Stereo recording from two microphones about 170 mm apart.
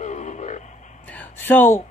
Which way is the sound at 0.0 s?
45° left (ahead or behind).